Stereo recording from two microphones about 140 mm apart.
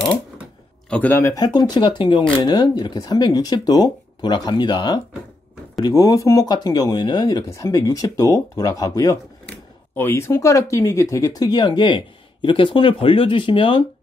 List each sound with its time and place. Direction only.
0.8 s speech: 10° left (ahead or behind); by 13.8 s 40° left (ahead or behind)